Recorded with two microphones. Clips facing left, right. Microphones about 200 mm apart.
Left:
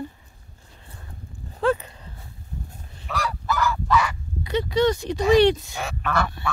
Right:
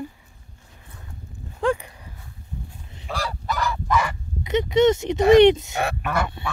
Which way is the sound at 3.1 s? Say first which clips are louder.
Left 1 dB; 30° right (ahead or behind).